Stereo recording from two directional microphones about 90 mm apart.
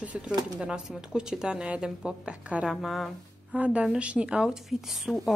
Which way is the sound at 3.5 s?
15° right (ahead or behind).